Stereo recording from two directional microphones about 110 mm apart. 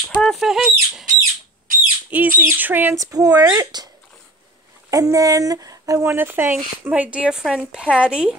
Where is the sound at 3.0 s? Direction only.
30° right (ahead or behind).